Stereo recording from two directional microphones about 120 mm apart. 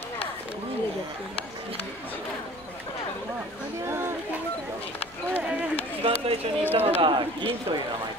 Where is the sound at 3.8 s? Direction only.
20° right (ahead or behind).